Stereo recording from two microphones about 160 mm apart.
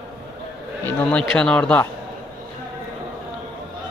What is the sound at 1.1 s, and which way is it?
Speech, 5° left (ahead or behind).